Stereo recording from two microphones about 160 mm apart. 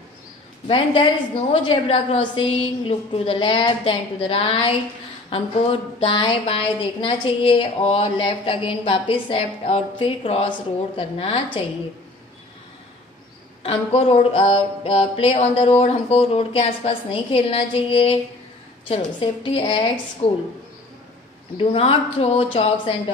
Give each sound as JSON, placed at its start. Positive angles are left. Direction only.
{"t": 0.7, "sound": "a woman's voice", "side_deg": 35}
{"t": 13.6, "sound": "a woman's voice", "side_deg": 35}
{"t": 21.5, "sound": "a woman's voice", "side_deg": 35}